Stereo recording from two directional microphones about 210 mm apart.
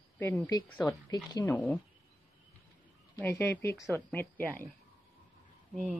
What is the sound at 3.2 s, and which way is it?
A woman's voice, 10° left (ahead or behind).